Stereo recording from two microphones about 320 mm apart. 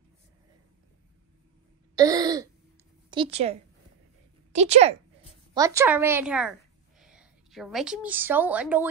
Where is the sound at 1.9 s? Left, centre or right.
Centre.